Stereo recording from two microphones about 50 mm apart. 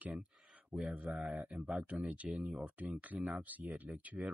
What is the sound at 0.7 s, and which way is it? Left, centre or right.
Speech, right.